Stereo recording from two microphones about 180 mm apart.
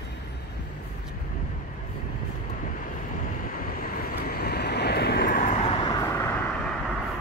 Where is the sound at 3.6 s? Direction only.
55° left (ahead or behind); by 5.9 s 35° left (ahead or behind).